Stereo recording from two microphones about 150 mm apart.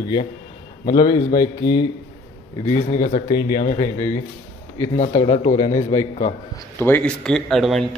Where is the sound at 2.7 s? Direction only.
55° left (ahead or behind).